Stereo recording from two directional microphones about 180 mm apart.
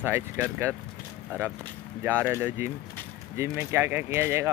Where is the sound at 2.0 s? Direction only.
10° right (ahead or behind).